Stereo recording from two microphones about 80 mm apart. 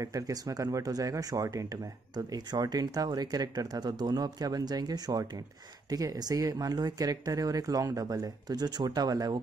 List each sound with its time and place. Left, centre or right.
0.0 s speech: right